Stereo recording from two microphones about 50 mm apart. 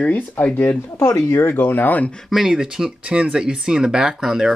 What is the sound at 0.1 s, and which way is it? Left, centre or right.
Speech, left.